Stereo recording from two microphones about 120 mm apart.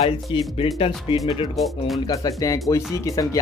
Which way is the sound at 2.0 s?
30° left (ahead or behind).